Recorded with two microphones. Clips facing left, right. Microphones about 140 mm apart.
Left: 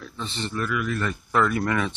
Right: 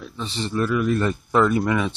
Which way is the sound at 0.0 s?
15° right (ahead or behind).